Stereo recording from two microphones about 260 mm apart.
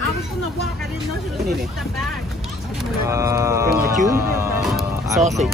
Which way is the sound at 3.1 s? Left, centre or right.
Centre.